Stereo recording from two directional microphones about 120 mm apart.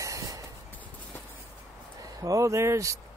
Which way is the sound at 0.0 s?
25° right (ahead or behind).